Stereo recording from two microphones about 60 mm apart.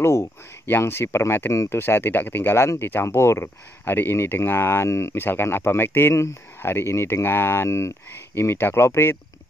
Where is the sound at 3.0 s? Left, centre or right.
Left.